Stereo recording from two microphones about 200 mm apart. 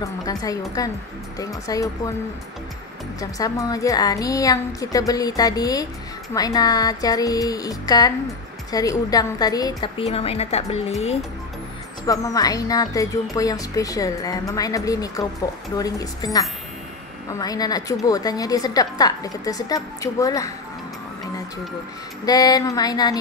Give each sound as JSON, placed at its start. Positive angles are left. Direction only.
{"t": 0.0, "sound": "speech", "side_deg": 20}
{"t": 3.2, "sound": "a woman's voice", "side_deg": 15}
{"t": 12.1, "sound": "speech", "side_deg": 15}
{"t": 17.3, "sound": "a woman's voice", "side_deg": 20}
{"t": 22.2, "sound": "a woman's voice", "side_deg": 20}